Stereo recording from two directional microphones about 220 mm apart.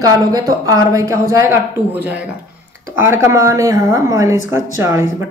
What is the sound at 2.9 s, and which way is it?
A woman's voice, 10° right (ahead or behind).